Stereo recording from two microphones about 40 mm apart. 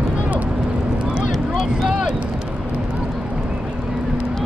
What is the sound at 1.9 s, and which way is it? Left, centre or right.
Vehicle, right.